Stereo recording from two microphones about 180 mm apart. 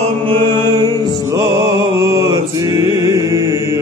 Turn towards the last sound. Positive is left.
turn(degrees=-15)  # may be behind; listen again after turning